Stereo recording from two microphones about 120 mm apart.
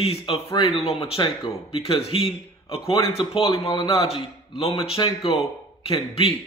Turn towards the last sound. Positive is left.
turn(degrees=50)  # may be behind; listen again after turning